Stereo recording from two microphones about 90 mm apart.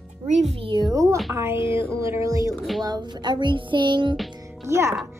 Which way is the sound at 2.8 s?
55° right (ahead or behind).